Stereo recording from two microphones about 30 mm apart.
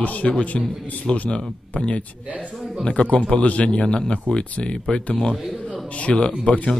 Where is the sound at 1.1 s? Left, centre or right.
Left.